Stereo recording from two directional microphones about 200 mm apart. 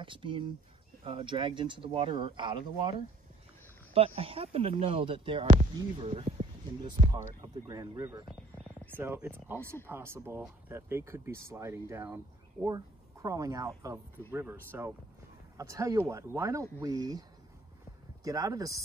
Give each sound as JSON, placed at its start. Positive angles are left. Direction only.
{"t": 0.0, "sound": "speech", "side_deg": -25}
{"t": 18.2, "sound": "speech", "side_deg": -15}